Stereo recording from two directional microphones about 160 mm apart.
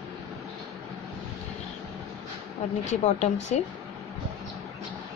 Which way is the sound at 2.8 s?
45° left (ahead or behind).